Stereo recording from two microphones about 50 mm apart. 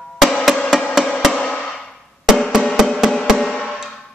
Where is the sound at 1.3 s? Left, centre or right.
Centre.